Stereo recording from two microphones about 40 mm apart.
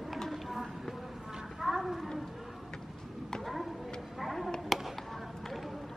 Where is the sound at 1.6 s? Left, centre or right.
Centre.